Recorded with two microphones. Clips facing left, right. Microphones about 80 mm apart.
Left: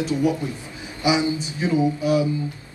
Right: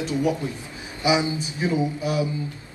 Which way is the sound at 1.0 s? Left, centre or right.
Right.